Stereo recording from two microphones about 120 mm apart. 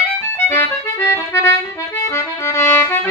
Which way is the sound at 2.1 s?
20° left (ahead or behind).